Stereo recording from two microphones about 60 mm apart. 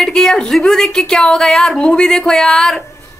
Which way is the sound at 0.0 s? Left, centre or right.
Centre.